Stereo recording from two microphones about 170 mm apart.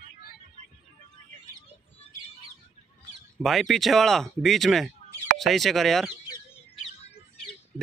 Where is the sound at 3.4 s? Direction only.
Centre (ahead or behind).